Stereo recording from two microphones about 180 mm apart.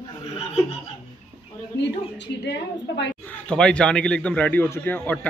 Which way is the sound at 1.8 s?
70° left (ahead or behind).